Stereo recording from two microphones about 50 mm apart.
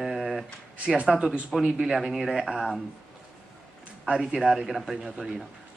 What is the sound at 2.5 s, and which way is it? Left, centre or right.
Speech, centre.